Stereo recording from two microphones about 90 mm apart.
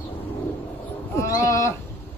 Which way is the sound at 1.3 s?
35° left (ahead or behind).